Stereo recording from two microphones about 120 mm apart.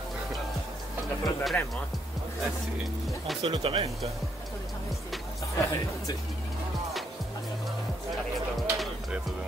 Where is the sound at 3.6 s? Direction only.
50° right (ahead or behind).